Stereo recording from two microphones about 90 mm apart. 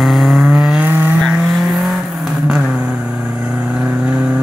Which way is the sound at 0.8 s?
20° right (ahead or behind).